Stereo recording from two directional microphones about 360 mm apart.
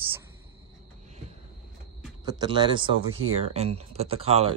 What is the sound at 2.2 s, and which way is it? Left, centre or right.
Speech, centre.